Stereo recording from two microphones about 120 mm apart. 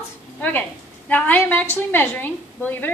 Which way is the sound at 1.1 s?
15° left (ahead or behind).